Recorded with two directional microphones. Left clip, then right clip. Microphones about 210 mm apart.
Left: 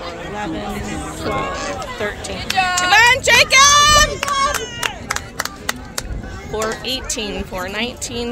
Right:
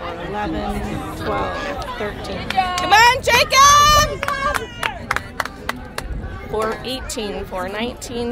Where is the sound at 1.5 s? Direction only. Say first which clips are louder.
Left 1 dB; 25° right (ahead or behind).